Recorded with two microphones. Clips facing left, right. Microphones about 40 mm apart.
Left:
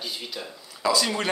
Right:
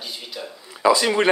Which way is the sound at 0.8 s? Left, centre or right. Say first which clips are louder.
Right 7 dB; right.